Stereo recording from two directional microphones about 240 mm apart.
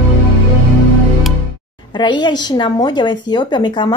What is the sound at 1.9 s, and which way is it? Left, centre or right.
A woman's voice, centre.